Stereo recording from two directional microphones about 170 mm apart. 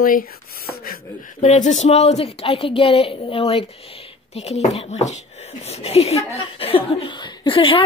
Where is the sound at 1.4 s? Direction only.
45° left (ahead or behind).